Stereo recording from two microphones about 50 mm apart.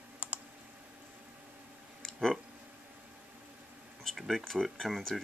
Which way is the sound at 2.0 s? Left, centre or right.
Centre.